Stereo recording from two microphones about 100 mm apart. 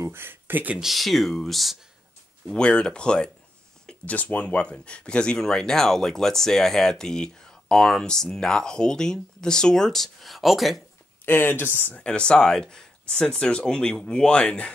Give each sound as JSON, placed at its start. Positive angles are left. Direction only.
{"t": 0.0, "sound": "speech", "side_deg": -20}
{"t": 0.7, "sound": "speech", "side_deg": 0}
{"t": 11.2, "sound": "speech", "side_deg": 25}